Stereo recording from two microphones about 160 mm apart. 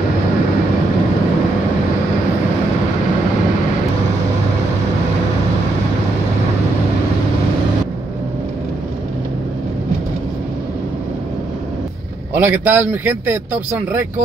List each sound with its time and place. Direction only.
12.4 s a man's voice: 10° right (ahead or behind)